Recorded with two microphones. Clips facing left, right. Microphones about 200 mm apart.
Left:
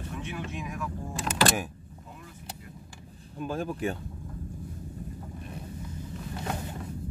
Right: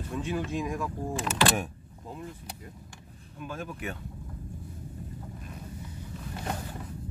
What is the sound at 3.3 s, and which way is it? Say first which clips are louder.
Speech: left 6 dB; 35° left (ahead or behind).